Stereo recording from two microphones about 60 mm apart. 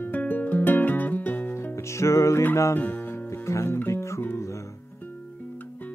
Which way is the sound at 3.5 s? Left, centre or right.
Left.